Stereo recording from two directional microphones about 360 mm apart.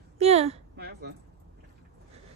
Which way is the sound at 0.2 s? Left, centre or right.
Centre.